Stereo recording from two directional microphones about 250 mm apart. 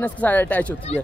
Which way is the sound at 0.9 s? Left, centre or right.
Left.